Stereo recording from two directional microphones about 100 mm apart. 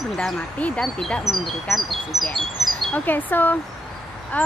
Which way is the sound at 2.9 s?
20° left (ahead or behind).